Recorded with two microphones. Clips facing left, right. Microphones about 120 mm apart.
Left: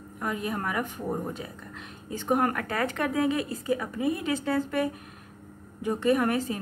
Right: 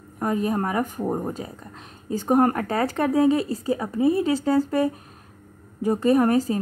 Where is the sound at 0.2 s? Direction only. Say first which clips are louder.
Right 7 dB; 40° right (ahead or behind).